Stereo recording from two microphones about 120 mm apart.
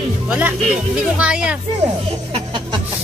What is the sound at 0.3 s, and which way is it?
Speech, 10° right (ahead or behind).